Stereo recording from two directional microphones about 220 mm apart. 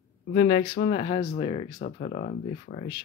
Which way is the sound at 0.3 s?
30° left (ahead or behind).